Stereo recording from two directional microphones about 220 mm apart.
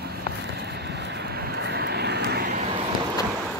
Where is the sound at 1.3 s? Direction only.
50° right (ahead or behind).